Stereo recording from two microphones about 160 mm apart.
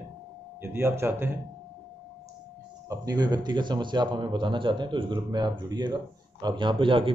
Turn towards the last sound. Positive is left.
turn(degrees=-35)  # may be behind; listen again after turning